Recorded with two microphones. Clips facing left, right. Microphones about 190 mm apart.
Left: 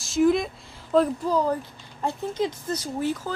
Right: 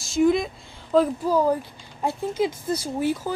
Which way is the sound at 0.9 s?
5° right (ahead or behind).